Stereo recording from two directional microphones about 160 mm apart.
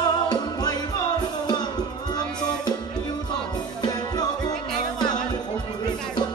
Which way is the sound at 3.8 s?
25° left (ahead or behind).